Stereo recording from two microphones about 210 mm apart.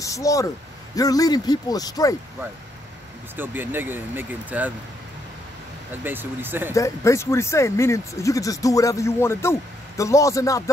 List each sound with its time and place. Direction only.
0.0 s speech: 15° left (ahead or behind)
3.3 s speech: 10° right (ahead or behind)
6.0 s speech: 10° right (ahead or behind)
6.7 s speech: 15° left (ahead or behind)